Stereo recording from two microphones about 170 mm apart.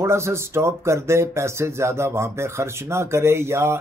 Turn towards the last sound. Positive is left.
turn(degrees=-15)  # may be behind; listen again after turning